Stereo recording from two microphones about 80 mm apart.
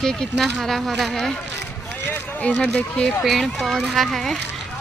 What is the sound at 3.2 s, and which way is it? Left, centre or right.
Speech, centre.